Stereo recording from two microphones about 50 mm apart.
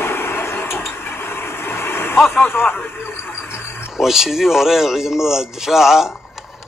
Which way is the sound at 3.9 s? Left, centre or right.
Centre.